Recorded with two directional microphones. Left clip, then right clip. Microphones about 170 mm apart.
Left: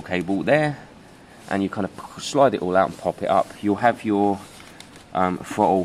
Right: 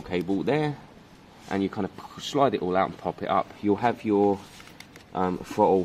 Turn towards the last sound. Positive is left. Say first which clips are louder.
# left 2 dB
turn(degrees=10)  # may be behind; listen again after turning